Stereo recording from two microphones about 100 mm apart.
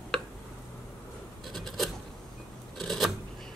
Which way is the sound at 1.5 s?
Centre (ahead or behind).